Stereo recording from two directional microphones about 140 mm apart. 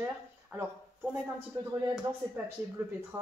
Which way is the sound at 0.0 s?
15° right (ahead or behind).